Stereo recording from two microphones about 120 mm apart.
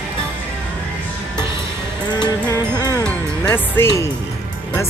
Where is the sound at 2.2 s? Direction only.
30° left (ahead or behind).